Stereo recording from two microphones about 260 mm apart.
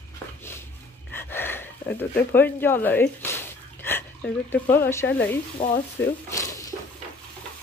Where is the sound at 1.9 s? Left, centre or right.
Centre.